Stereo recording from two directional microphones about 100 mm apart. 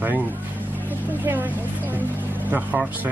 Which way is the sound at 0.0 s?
20° right (ahead or behind).